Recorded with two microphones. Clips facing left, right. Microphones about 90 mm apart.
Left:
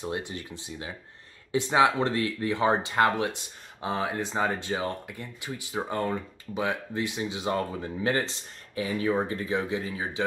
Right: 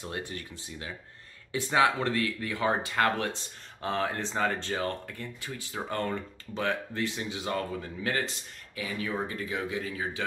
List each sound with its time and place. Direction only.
0.0 s speech: 20° left (ahead or behind)